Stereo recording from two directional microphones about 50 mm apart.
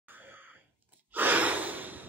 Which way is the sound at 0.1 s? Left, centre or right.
Right.